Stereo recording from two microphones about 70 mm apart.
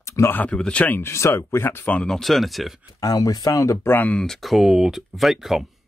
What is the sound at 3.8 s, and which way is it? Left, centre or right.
Speech, left.